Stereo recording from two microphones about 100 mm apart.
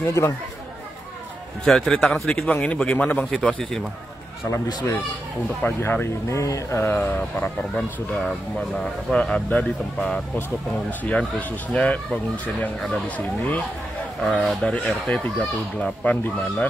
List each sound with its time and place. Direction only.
0.0 s speech: 25° left (ahead or behind)
1.6 s a man's voice: 5° left (ahead or behind)
5.6 s speech: 20° left (ahead or behind)
8.2 s a man's voice: 5° left (ahead or behind)
13.4 s speech: 15° left (ahead or behind)